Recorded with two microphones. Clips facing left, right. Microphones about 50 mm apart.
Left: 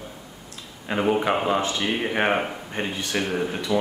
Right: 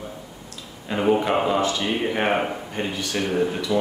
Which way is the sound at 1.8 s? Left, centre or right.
Centre.